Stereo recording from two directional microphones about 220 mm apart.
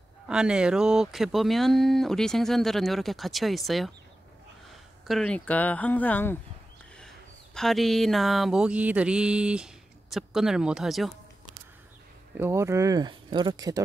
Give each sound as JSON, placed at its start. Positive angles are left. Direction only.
{"t": 0.3, "sound": "speech", "side_deg": -5}
{"t": 5.0, "sound": "speech", "side_deg": 0}
{"t": 7.5, "sound": "speech", "side_deg": 0}
{"t": 12.4, "sound": "speech", "side_deg": -10}